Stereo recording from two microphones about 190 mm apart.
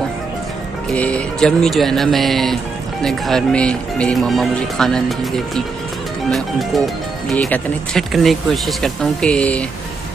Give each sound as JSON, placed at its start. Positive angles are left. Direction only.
{"t": 0.8, "sound": "speech", "side_deg": 5}
{"t": 7.2, "sound": "speech", "side_deg": 10}